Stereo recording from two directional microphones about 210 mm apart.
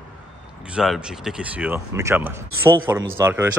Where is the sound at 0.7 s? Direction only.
5° right (ahead or behind).